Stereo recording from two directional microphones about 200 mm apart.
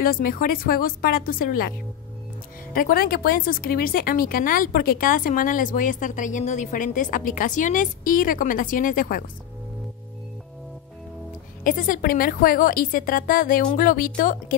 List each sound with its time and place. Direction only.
0.0 s speech: 45° left (ahead or behind)
2.7 s speech: 45° left (ahead or behind)
11.6 s speech: 45° left (ahead or behind)